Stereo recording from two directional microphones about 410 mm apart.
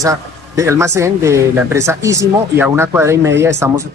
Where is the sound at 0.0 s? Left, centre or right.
Centre.